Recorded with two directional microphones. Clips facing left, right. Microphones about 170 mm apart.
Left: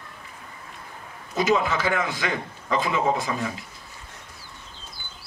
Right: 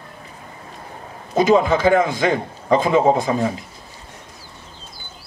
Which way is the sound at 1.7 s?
25° right (ahead or behind).